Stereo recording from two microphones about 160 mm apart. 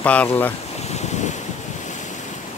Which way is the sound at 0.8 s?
45° left (ahead or behind).